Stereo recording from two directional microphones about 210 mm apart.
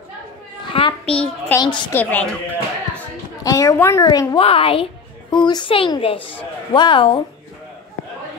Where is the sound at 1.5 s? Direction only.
20° left (ahead or behind).